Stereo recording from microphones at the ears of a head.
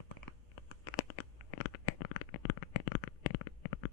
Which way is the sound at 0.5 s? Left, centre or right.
Left.